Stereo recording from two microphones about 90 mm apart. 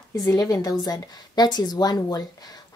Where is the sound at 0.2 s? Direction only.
40° left (ahead or behind).